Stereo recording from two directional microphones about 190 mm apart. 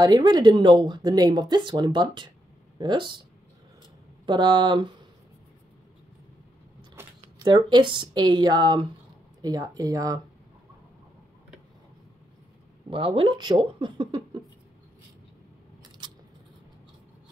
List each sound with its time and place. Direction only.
0.0 s speech: 20° right (ahead or behind)
4.3 s speech: 25° right (ahead or behind)
7.3 s speech: 25° right (ahead or behind)
12.9 s speech: 30° right (ahead or behind)
16.0 s scissors: 25° right (ahead or behind)